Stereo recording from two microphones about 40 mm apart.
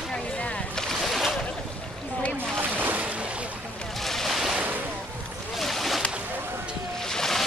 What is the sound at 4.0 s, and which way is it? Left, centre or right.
Boat, centre.